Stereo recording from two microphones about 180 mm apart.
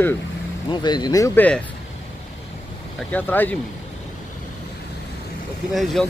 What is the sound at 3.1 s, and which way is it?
Speech, 10° left (ahead or behind).